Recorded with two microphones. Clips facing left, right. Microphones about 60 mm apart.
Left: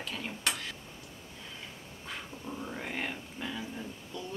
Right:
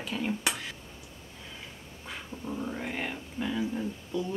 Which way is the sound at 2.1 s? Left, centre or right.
Centre.